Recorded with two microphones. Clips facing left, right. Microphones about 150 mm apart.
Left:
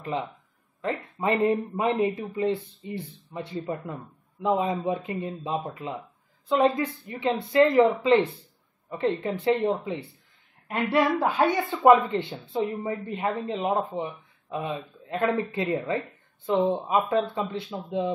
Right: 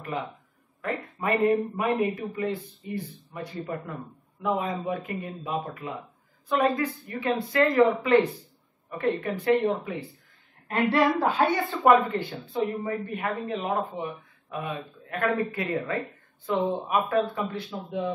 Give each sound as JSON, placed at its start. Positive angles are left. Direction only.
{"t": 0.1, "sound": "a man's voice", "side_deg": 20}